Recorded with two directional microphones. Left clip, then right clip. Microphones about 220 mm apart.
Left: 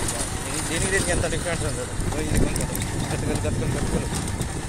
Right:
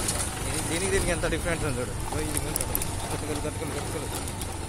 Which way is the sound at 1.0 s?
15° right (ahead or behind).